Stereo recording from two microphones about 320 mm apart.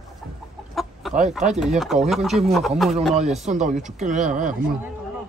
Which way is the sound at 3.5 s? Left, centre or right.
Right.